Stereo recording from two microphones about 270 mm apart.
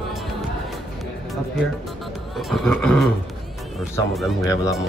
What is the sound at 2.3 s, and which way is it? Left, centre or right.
Speech, centre.